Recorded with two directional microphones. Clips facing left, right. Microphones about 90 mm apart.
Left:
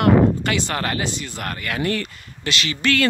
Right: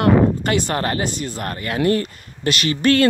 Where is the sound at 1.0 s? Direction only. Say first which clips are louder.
Right 3 dB; 45° right (ahead or behind).